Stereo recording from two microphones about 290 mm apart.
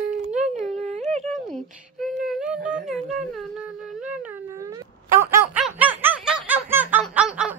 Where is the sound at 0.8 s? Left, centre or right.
Right.